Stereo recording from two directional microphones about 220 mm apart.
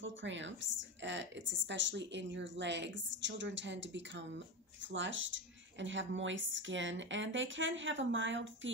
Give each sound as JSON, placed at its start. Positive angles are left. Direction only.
{"t": 0.0, "sound": "speech", "side_deg": -55}